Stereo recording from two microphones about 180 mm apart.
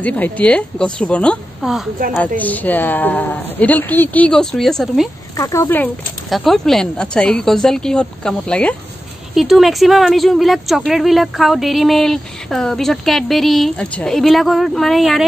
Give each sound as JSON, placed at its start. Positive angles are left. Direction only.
{"t": 0.0, "sound": "a woman's voice", "side_deg": 10}
{"t": 2.1, "sound": "a woman's voice", "side_deg": 10}
{"t": 5.3, "sound": "a woman's voice", "side_deg": 15}
{"t": 6.3, "sound": "a woman's voice", "side_deg": 0}